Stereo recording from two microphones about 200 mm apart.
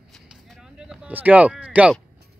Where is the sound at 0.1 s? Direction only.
Centre (ahead or behind).